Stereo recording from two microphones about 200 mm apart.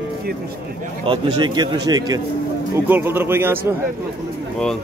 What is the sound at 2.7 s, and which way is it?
Speech, 10° right (ahead or behind).